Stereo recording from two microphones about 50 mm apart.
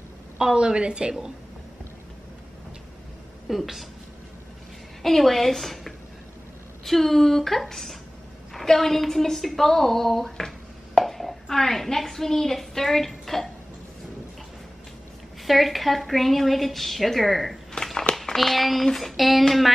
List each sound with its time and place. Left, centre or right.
0.4 s a woman's voice: centre
3.4 s a woman's voice: centre
5.0 s a woman's voice: centre
15.4 s a woman's voice: centre
17.8 s a sound: centre
18.1 s a sound: centre
18.9 s a woman's voice: centre